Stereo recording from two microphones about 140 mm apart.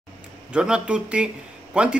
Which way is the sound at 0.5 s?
5° right (ahead or behind).